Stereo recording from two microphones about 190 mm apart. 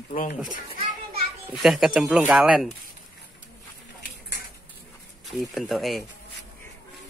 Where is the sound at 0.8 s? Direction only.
25° right (ahead or behind).